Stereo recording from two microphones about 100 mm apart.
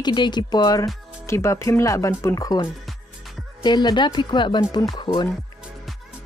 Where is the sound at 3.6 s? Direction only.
45° left (ahead or behind).